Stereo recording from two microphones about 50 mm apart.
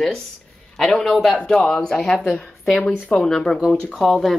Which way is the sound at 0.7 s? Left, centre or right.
Centre.